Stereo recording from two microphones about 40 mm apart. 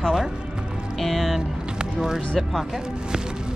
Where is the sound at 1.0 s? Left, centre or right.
Centre.